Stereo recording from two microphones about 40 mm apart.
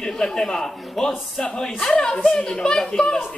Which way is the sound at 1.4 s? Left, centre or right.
Centre.